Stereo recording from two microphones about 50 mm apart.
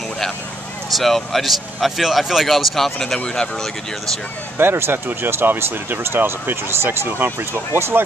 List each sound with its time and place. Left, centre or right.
0.8 s speech: centre
4.6 s speech: right
5.0 s speech: right